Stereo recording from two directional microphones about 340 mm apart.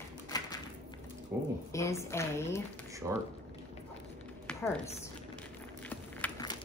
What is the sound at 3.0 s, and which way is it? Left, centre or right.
Speech, centre.